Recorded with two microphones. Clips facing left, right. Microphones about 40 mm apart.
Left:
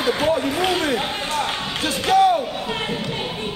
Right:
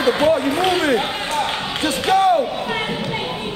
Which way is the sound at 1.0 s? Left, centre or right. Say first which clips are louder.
Right 2 dB; centre.